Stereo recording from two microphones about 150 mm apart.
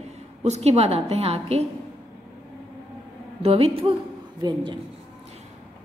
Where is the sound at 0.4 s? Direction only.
45° right (ahead or behind).